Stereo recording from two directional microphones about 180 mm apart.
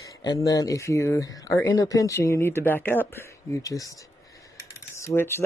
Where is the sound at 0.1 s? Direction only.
20° left (ahead or behind).